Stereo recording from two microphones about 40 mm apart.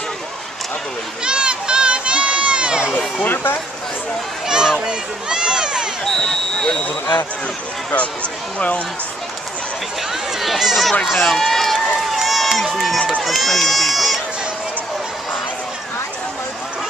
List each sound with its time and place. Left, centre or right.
1.2 s crowd: right
4.5 s a sound: centre
6.0 s speech: centre
8.5 s speech: left
10.4 s speech: centre
11.1 s run: centre
12.7 s speech: centre